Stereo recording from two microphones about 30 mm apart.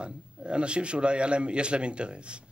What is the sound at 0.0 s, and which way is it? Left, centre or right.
A man's voice, right.